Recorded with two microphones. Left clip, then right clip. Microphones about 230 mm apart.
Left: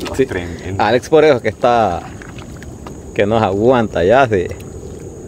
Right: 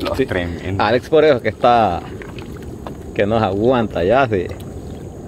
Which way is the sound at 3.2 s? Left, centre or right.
Centre.